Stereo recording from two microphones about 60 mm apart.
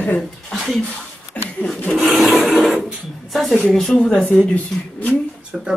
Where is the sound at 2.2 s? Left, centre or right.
Centre.